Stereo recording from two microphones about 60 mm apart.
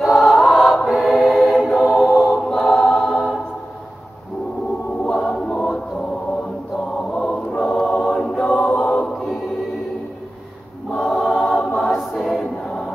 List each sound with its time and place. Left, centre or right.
0.0 s choir: centre
2.3 s choir: centre
5.0 s choir: centre
5.3 s choir: centre
7.1 s choir: left
7.5 s choir: centre
8.4 s choir: left
10.9 s choir: centre